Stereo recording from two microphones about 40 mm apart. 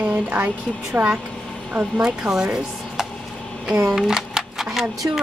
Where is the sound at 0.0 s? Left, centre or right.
Right.